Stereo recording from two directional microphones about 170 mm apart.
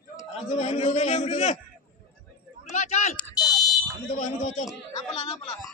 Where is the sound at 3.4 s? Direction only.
20° left (ahead or behind).